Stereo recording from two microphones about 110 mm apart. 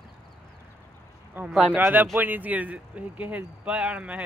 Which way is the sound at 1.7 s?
15° right (ahead or behind).